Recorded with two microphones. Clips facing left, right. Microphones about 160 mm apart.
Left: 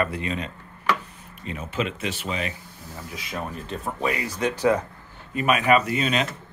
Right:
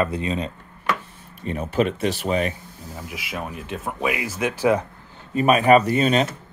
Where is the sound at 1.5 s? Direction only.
45° right (ahead or behind).